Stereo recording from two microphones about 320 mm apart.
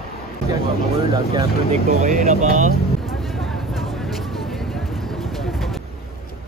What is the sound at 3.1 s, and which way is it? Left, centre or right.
Vehicle, centre.